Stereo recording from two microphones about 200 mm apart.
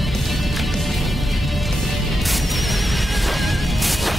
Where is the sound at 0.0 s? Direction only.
Centre (ahead or behind).